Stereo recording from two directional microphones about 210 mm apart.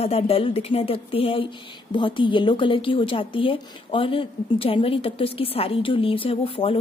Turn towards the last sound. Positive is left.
turn(degrees=25)  # may be behind; listen again after turning